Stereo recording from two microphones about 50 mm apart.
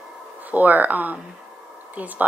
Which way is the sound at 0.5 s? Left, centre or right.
Right.